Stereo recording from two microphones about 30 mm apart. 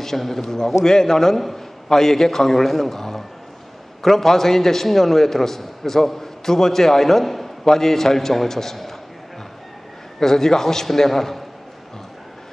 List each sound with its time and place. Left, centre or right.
0.0 s a man's voice: centre
10.1 s a man's voice: centre